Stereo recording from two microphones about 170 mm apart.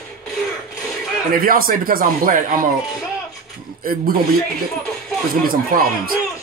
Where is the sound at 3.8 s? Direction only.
60° right (ahead or behind).